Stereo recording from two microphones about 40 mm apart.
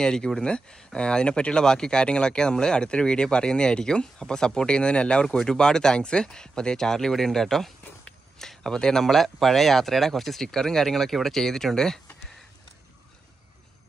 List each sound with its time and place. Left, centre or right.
0.0 s speech: centre
5.2 s speech: centre